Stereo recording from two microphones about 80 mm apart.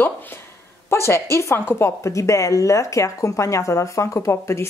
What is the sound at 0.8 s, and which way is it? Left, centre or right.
A woman's voice, left.